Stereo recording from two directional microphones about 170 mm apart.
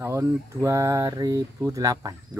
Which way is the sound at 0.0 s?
15° right (ahead or behind).